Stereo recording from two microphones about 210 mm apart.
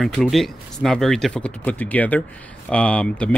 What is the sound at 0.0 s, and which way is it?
Speech, centre (ahead or behind).